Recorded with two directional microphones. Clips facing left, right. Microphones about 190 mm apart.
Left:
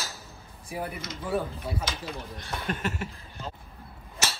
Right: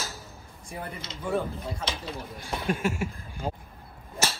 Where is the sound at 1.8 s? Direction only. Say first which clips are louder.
Right 1 dB; 25° right (ahead or behind).